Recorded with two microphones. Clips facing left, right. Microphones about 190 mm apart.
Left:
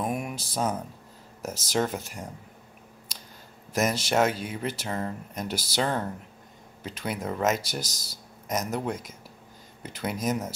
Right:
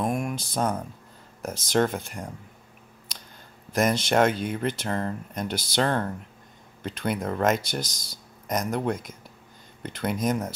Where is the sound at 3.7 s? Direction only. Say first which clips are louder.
Right 3 dB; 5° left (ahead or behind).